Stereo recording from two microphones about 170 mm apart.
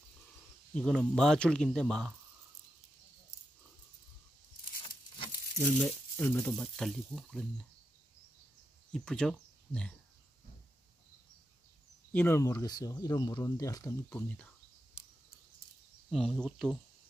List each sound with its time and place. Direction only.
0.7 s speech: 5° left (ahead or behind)
5.6 s speech: 10° left (ahead or behind)
8.9 s speech: 5° left (ahead or behind)
12.1 s speech: 15° left (ahead or behind)
16.1 s speech: centre (ahead or behind)